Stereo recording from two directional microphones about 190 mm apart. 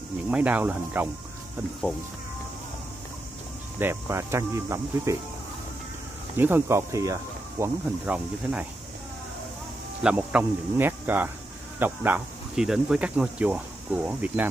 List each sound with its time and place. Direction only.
0.3 s speech: 5° right (ahead or behind)
3.8 s speech: 15° right (ahead or behind)
6.3 s speech: 10° right (ahead or behind)
10.0 s speech: 10° right (ahead or behind)